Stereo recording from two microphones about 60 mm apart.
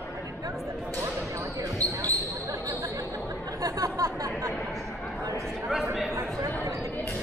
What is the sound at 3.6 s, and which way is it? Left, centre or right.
Chatter, right.